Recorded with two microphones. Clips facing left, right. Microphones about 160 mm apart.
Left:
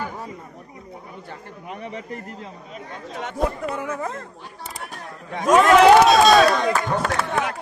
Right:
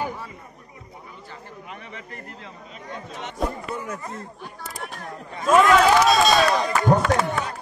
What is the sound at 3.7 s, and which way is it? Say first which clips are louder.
Speech: left 4 dB; 90° left.